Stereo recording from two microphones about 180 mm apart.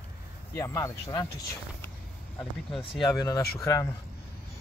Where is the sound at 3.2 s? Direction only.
20° left (ahead or behind).